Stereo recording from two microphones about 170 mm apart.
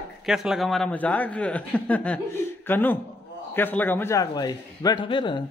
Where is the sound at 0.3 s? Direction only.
5° right (ahead or behind).